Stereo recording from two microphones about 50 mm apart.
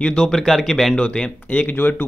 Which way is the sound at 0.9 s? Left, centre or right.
Centre.